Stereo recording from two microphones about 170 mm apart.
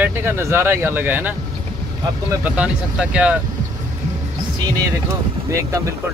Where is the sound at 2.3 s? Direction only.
10° right (ahead or behind).